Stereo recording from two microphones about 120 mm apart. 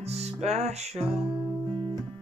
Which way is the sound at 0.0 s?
65° right (ahead or behind).